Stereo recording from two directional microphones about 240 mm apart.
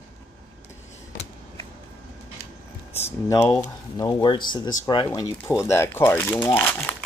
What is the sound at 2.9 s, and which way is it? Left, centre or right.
Speech, centre.